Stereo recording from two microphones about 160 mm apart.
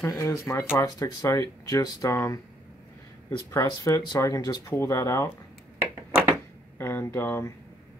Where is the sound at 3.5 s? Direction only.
20° left (ahead or behind).